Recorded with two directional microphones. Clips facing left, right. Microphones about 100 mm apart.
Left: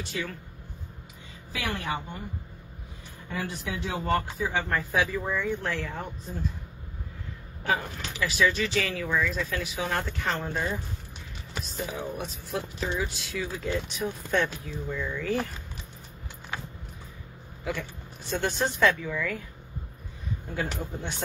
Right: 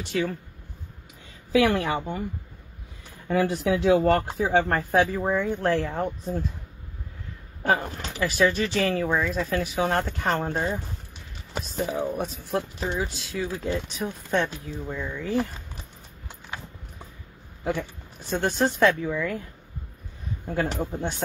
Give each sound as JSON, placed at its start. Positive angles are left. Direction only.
{"t": 0.1, "sound": "speech", "side_deg": -55}
{"t": 1.5, "sound": "a woman's voice", "side_deg": -85}
{"t": 3.3, "sound": "speech", "side_deg": -85}
{"t": 4.3, "sound": "speech", "side_deg": -55}
{"t": 7.8, "sound": "speech", "side_deg": -35}
{"t": 10.2, "sound": "speech", "side_deg": -45}
{"t": 10.5, "sound": "speech", "side_deg": -30}
{"t": 18.4, "sound": "speech", "side_deg": -35}
{"t": 19.0, "sound": "speech", "side_deg": -25}
{"t": 20.4, "sound": "speech", "side_deg": -45}